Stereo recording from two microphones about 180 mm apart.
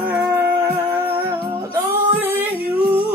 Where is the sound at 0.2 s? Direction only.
15° right (ahead or behind).